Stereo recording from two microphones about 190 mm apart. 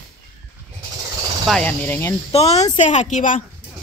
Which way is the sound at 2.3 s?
35° left (ahead or behind).